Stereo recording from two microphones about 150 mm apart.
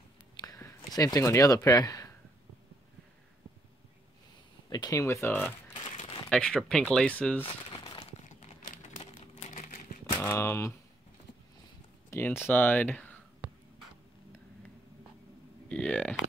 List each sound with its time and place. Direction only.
0.4 s a sound: 20° left (ahead or behind)
4.6 s speech: 25° left (ahead or behind)
6.3 s speech: 5° left (ahead or behind)
7.8 s breaking: 35° left (ahead or behind)
8.2 s a sound: 50° left (ahead or behind)
10.1 s speech: 15° left (ahead or behind)
12.1 s speech: 15° left (ahead or behind)
13.4 s a sound: 5° right (ahead or behind)
15.7 s speech: 5° left (ahead or behind)